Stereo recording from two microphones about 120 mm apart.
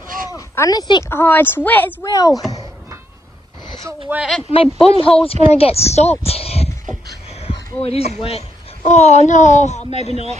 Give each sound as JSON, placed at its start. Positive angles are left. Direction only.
{"t": 0.3, "sound": "a sound", "side_deg": 30}
{"t": 1.0, "sound": "speech", "side_deg": 20}
{"t": 2.0, "sound": "speech", "side_deg": 30}
{"t": 4.1, "sound": "speech", "side_deg": -5}
{"t": 4.8, "sound": "speech", "side_deg": 50}